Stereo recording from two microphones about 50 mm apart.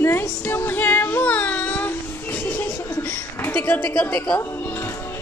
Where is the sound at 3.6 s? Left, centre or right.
Left.